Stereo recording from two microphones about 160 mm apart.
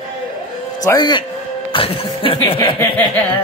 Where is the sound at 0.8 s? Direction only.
25° left (ahead or behind).